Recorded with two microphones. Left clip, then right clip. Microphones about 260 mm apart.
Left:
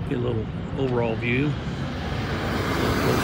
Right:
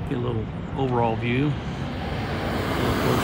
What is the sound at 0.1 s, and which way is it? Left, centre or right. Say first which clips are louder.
Speech: left 2 dB; centre.